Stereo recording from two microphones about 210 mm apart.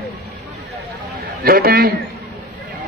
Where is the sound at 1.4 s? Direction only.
45° right (ahead or behind).